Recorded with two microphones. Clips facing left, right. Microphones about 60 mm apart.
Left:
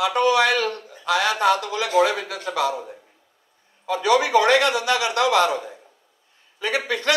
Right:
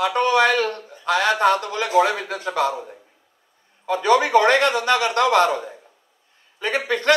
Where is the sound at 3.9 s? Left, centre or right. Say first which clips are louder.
Right 2 dB; right.